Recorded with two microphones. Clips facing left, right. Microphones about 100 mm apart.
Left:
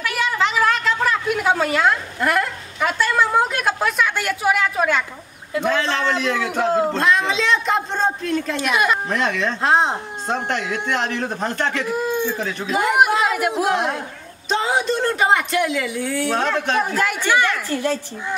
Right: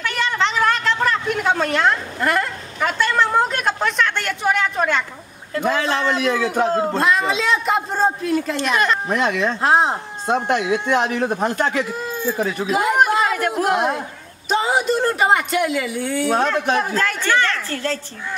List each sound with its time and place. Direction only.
0.0 s a woman's voice: 5° left (ahead or behind)
5.6 s speech: 5° right (ahead or behind)
8.5 s speech: 5° left (ahead or behind)
9.0 s speech: 5° right (ahead or behind)
13.7 s speech: 5° right (ahead or behind)
16.9 s speech: 15° left (ahead or behind)